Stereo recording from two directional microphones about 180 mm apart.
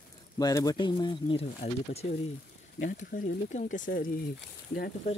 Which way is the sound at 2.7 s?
50° left (ahead or behind).